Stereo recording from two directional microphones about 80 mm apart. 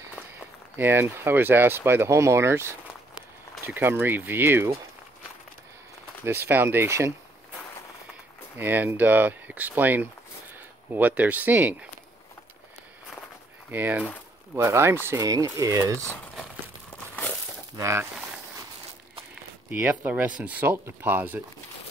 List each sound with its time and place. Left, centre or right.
0.7 s speech: right
6.2 s speech: right
8.5 s speech: right
13.7 s speech: right
14.5 s speech: right
15.2 s speech: right
17.7 s speech: right
19.7 s speech: centre